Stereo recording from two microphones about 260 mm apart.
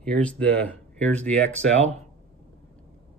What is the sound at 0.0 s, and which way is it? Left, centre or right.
Speech, centre.